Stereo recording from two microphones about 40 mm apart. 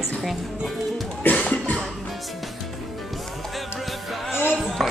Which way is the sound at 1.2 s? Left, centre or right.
Left.